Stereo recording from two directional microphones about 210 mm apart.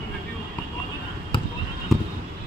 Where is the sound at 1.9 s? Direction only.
Centre (ahead or behind).